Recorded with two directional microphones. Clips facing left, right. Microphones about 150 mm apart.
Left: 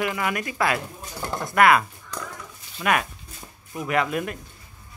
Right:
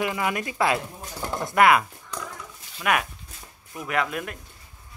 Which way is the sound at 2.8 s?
5° right (ahead or behind).